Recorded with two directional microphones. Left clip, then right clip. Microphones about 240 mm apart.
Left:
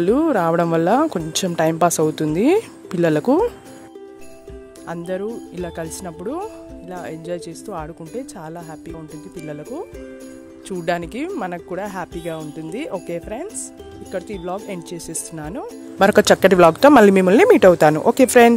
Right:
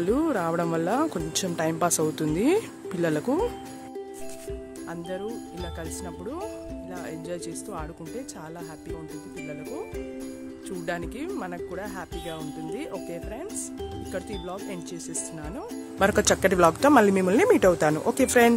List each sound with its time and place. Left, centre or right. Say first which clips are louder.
0.0 s speech: left 8 dB; left
4.8 s speech: left 9 dB; left
10.9 s speech: left 9 dB; left